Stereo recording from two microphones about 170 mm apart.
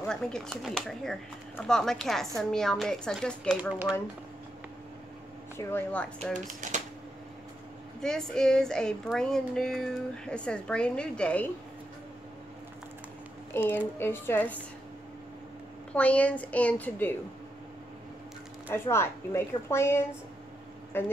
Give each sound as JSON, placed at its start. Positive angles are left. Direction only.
{"t": 0.0, "sound": "speech", "side_deg": 5}
{"t": 5.6, "sound": "a woman's voice", "side_deg": 10}
{"t": 6.3, "sound": "speech", "side_deg": -45}
{"t": 8.0, "sound": "speech", "side_deg": 5}
{"t": 13.5, "sound": "a woman's voice", "side_deg": 10}
{"t": 15.9, "sound": "a woman's voice", "side_deg": 10}
{"t": 18.7, "sound": "a woman's voice", "side_deg": 15}